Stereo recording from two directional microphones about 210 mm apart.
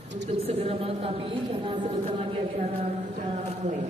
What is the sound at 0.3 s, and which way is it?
A woman's voice, 30° right (ahead or behind).